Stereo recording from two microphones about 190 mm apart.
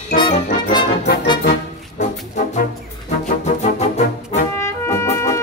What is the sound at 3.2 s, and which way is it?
Music, 40° left (ahead or behind).